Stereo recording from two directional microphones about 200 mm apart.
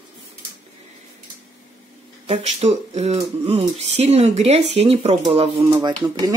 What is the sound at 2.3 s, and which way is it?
Speech, 35° right (ahead or behind).